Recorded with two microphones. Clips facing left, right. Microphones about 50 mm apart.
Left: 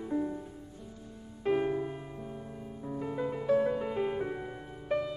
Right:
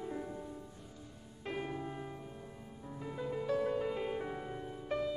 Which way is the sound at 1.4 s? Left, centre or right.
Left.